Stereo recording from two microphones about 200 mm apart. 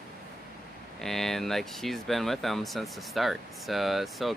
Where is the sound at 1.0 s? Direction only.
Centre (ahead or behind).